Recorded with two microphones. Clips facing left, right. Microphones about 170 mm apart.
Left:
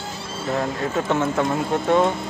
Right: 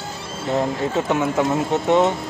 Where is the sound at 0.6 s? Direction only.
20° right (ahead or behind).